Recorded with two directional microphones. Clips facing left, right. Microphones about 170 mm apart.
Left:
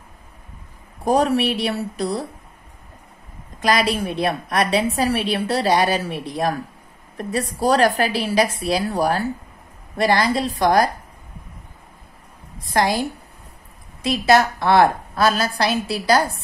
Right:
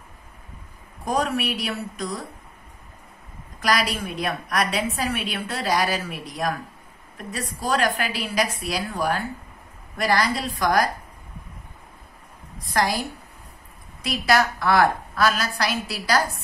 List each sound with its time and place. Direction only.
1.0 s a woman's voice: 35° left (ahead or behind)
3.6 s a woman's voice: 25° left (ahead or behind)
9.9 s a woman's voice: 25° left (ahead or behind)
12.7 s a woman's voice: 25° left (ahead or behind)
14.0 s a woman's voice: 25° left (ahead or behind)